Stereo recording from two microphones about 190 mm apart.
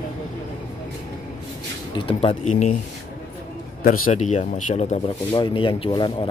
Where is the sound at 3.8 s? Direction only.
45° left (ahead or behind).